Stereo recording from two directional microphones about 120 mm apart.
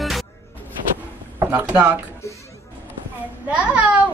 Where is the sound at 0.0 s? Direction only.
Centre (ahead or behind).